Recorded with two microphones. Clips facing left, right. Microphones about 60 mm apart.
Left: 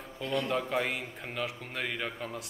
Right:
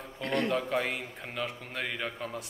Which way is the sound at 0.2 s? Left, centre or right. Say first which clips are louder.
Right 2 dB; right.